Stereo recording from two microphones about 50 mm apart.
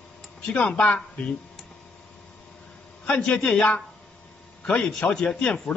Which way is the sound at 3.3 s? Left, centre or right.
Left.